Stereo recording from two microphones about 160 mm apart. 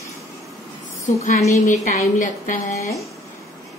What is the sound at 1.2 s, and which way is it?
A woman's voice, 50° left (ahead or behind).